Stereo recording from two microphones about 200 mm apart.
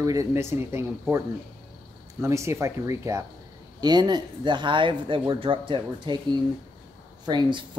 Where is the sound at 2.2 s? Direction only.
15° right (ahead or behind).